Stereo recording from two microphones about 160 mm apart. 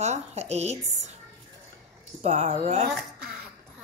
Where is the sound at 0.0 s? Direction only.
45° right (ahead or behind).